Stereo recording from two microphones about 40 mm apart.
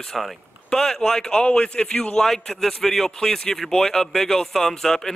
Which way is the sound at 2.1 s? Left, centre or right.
Centre.